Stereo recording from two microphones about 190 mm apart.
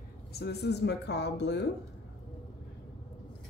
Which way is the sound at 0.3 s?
60° left (ahead or behind).